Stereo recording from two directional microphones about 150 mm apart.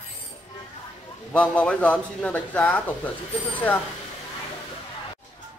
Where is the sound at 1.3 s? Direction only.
10° left (ahead or behind).